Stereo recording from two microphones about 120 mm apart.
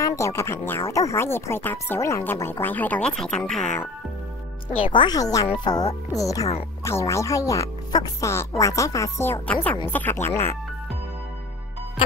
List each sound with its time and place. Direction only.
0.0 s speech: 25° left (ahead or behind); by 3.8 s 5° left (ahead or behind)
4.8 s speech: 40° left (ahead or behind); by 10.5 s 20° left (ahead or behind)